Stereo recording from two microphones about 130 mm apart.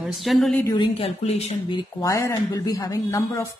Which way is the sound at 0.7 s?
50° left (ahead or behind).